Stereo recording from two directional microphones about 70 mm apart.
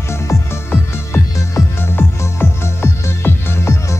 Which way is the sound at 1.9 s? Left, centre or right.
Left.